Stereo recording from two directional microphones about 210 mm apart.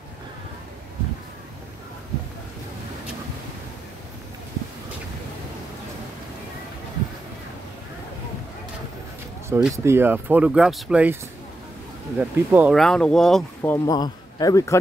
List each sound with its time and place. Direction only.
9.5 s speech: 10° right (ahead or behind)
12.2 s speech: 10° right (ahead or behind)
13.6 s a man's voice: 15° left (ahead or behind)